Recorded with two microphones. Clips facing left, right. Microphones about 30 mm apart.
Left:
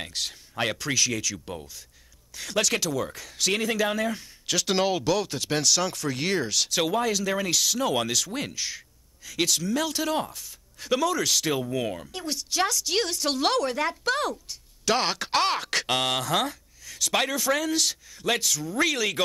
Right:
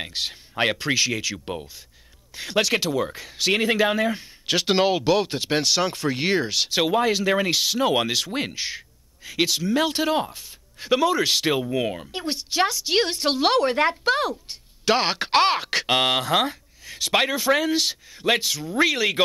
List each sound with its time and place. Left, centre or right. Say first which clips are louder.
0.0 s speech: right 4 dB; right
11.7 s speech: right 4 dB; centre